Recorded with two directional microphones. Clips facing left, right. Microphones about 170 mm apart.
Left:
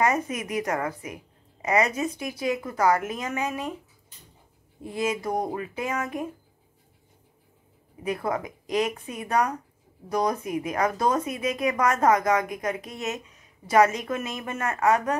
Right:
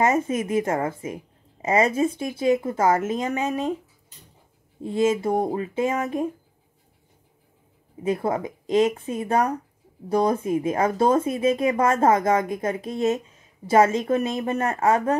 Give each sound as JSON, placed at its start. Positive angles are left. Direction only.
{"t": 0.0, "sound": "speech", "side_deg": -25}
{"t": 4.8, "sound": "speech", "side_deg": -25}
{"t": 8.0, "sound": "speech", "side_deg": -25}